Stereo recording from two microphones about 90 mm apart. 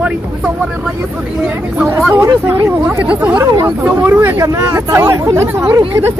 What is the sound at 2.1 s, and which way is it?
Speech, 30° right (ahead or behind).